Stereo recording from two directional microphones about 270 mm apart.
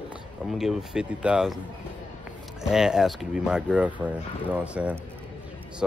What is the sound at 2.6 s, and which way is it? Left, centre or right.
Speech, centre.